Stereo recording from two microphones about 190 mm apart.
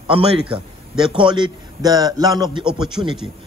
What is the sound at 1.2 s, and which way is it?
A man's voice, 25° right (ahead or behind).